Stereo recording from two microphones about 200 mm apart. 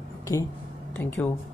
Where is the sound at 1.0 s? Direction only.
10° left (ahead or behind).